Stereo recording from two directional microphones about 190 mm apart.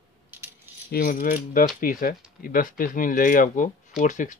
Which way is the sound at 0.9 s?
45° left (ahead or behind).